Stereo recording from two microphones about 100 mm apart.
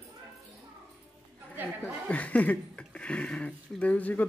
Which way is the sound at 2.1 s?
15° left (ahead or behind).